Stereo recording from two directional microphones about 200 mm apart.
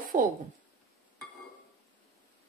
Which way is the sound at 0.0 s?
45° right (ahead or behind).